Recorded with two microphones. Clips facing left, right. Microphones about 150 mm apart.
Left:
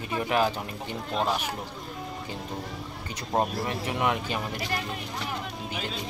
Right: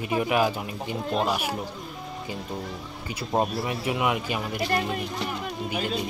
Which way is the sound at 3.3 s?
5° right (ahead or behind).